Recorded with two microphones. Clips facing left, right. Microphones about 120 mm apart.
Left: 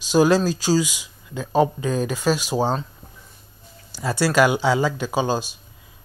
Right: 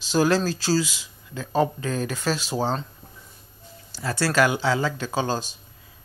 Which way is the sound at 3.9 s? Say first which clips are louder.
Left 3 dB; 15° left (ahead or behind).